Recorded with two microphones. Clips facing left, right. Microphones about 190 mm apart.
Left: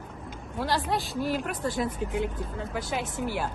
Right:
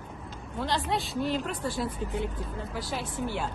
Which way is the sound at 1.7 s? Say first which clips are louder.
Left 3 dB; 20° left (ahead or behind).